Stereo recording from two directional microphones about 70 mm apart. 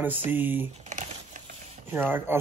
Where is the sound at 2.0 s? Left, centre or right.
Right.